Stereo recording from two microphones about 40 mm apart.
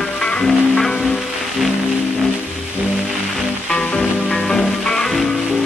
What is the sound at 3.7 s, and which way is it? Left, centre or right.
Music, left.